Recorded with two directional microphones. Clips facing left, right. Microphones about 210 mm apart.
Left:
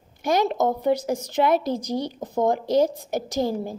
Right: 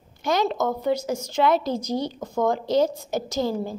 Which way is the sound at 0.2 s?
15° left (ahead or behind).